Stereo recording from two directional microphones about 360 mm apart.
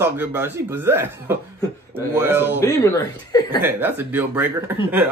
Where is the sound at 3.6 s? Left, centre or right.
Centre.